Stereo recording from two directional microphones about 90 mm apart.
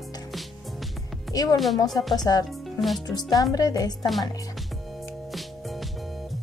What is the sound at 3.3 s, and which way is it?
Speech, 45° left (ahead or behind).